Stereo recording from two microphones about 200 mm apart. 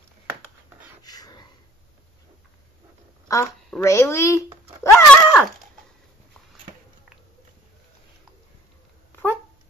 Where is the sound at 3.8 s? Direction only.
15° left (ahead or behind).